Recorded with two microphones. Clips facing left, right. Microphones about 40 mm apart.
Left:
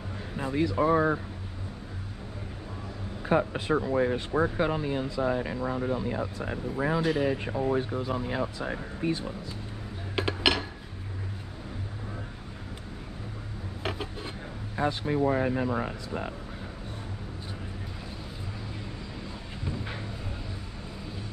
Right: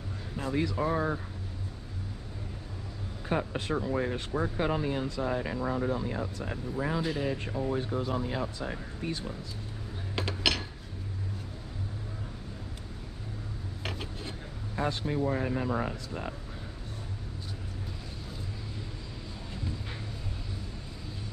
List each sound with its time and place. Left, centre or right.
0.6 s speech: centre
3.3 s speech: centre
4.6 s speech: centre
5.0 s speech: centre
5.3 s speech: centre
10.1 s a sound: centre
13.8 s a sound: centre
14.8 s speech: centre